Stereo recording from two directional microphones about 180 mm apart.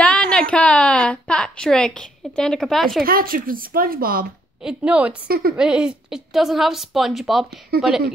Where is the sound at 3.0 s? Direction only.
55° right (ahead or behind).